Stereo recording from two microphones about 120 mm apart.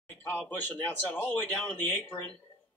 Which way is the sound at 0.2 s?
15° left (ahead or behind).